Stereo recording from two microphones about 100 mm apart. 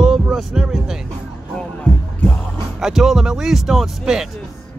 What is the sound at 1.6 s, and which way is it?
Music, 15° left (ahead or behind).